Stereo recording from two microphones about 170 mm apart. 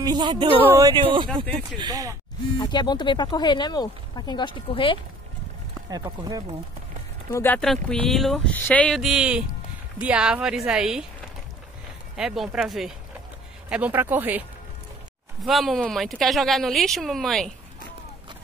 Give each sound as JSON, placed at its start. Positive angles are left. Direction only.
{"t": 0.0, "sound": "speech", "side_deg": -25}
{"t": 1.4, "sound": "speech", "side_deg": 10}
{"t": 1.8, "sound": "speech", "side_deg": -20}
{"t": 2.6, "sound": "speech", "side_deg": 25}
{"t": 5.9, "sound": "speech", "side_deg": -20}
{"t": 7.3, "sound": "speech", "side_deg": 10}
{"t": 12.2, "sound": "speech", "side_deg": -5}
{"t": 15.4, "sound": "speech", "side_deg": 0}